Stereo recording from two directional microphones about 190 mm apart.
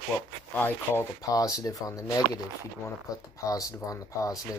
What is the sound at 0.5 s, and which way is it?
Speech, 10° left (ahead or behind).